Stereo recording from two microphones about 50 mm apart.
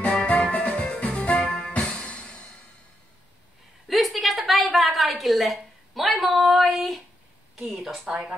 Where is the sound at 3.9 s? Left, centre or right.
Centre.